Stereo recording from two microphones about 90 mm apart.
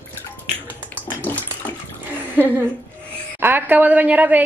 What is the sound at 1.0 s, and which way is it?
Bathtub, 20° left (ahead or behind).